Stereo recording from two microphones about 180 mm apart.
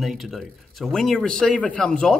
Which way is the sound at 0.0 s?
Centre (ahead or behind).